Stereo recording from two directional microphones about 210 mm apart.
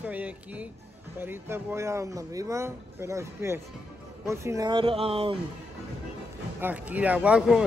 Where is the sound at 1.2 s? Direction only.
10° right (ahead or behind); by 5.4 s 25° right (ahead or behind).